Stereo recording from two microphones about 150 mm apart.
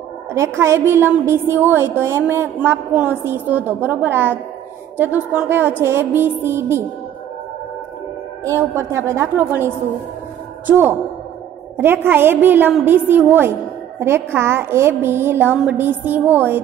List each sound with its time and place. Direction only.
0.3 s a woman's voice: 20° right (ahead or behind)
8.5 s a woman's voice: 20° right (ahead or behind)
11.7 s a woman's voice: 15° right (ahead or behind)